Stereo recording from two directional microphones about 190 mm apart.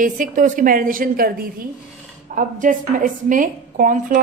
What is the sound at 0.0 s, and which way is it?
A woman's voice, 45° right (ahead or behind).